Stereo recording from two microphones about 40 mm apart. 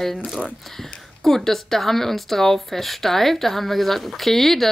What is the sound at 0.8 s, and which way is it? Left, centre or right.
Speech, centre.